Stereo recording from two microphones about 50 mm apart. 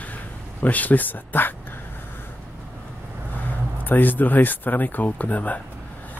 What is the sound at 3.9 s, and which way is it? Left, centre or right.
Speech, left.